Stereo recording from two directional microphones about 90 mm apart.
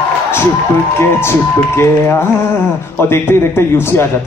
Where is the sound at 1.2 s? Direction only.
30° left (ahead or behind).